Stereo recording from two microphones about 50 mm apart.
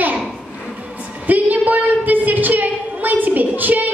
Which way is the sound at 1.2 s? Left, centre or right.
Right.